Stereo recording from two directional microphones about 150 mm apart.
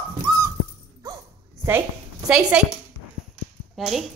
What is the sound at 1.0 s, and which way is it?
Dog, 20° right (ahead or behind).